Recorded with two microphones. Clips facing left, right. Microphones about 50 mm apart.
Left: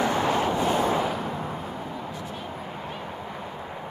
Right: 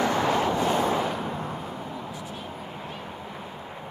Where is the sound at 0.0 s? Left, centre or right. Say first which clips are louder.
Even; left.